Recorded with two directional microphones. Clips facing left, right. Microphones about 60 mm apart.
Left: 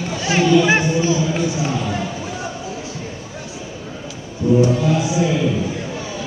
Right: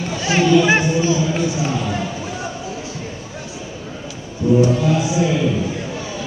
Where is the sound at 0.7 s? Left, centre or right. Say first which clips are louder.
Even; centre.